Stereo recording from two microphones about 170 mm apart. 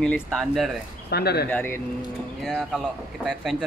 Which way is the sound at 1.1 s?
70° left (ahead or behind).